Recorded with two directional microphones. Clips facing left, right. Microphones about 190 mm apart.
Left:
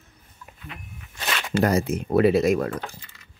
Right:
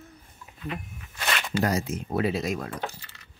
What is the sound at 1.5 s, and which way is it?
Speech, 60° left (ahead or behind).